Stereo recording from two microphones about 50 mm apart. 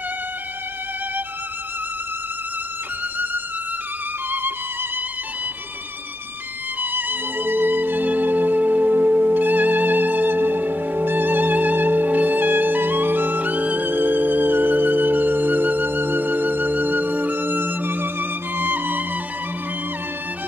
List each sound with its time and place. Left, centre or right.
4.3 s music: right
6.8 s music: right